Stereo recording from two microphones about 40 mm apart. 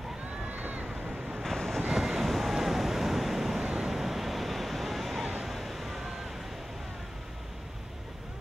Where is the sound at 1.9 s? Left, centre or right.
Centre.